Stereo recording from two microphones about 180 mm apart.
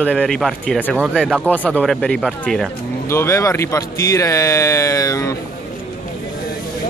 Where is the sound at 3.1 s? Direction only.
15° left (ahead or behind).